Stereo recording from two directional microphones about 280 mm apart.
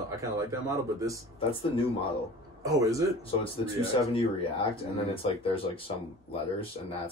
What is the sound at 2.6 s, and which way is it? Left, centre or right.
Speech, centre.